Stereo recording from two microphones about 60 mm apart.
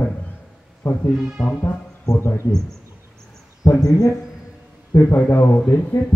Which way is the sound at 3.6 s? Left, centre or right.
Left.